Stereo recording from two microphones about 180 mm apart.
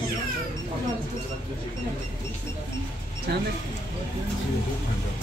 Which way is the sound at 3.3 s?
65° right (ahead or behind).